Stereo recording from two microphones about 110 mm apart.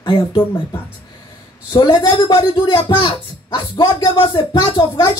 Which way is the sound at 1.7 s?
35° left (ahead or behind).